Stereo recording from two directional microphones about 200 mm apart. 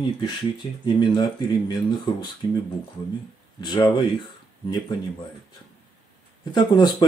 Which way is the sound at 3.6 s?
20° left (ahead or behind).